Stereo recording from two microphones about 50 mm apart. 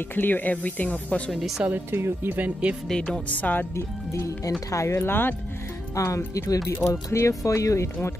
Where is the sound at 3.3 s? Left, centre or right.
Left.